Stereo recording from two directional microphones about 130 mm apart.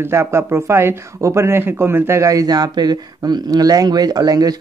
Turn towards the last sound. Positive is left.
turn(degrees=-30)  # may be behind; listen again after turning